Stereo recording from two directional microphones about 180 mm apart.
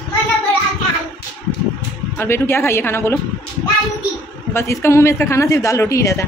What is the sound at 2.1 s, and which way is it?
Speech, 15° left (ahead or behind).